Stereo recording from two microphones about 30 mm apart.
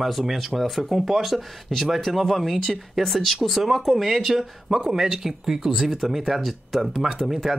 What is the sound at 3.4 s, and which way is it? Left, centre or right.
Speech, centre.